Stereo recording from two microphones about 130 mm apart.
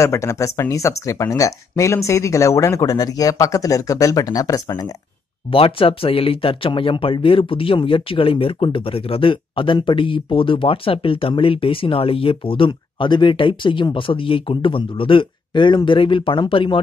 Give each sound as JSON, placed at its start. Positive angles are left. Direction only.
{"t": 0.0, "sound": "speech", "side_deg": 20}
{"t": 5.5, "sound": "speech", "side_deg": 45}